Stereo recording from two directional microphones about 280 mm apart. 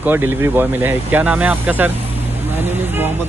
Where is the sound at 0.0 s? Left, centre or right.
Centre.